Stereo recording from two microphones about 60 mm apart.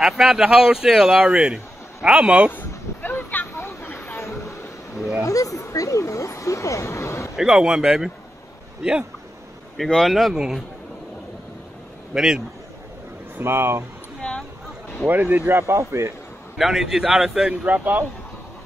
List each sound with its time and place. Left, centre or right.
0.0 s a man's voice: centre
2.2 s speech: centre
2.5 s a sound: left
5.2 s speech: left
7.3 s a man's voice: centre
9.8 s speech: centre
12.1 s a man's voice: centre
13.4 s speech: right
15.0 s speech: right
15.6 s speech: right
16.5 s a man's voice: centre
17.6 s speech: right